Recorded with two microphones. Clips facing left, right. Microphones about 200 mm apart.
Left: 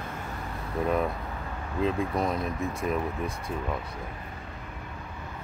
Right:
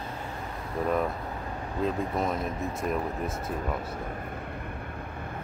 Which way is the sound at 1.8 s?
Centre (ahead or behind).